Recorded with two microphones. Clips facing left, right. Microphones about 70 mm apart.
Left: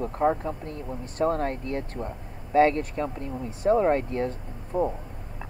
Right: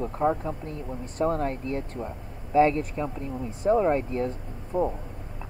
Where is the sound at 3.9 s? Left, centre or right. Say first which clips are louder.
Left 1 dB; left.